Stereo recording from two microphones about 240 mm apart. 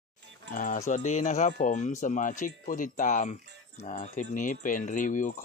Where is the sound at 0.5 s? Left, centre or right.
Left.